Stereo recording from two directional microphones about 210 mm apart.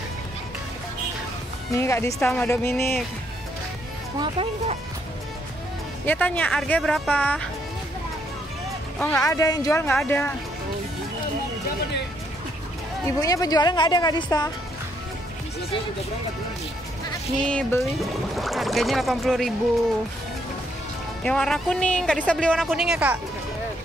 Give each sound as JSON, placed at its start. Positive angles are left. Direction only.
{"t": 1.8, "sound": "speech", "side_deg": 15}
{"t": 4.2, "sound": "speech", "side_deg": -25}
{"t": 6.0, "sound": "speech", "side_deg": 5}
{"t": 9.0, "sound": "speech", "side_deg": 15}
{"t": 13.0, "sound": "speech", "side_deg": 15}
{"t": 17.4, "sound": "speech", "side_deg": 5}
{"t": 21.2, "sound": "speech", "side_deg": 5}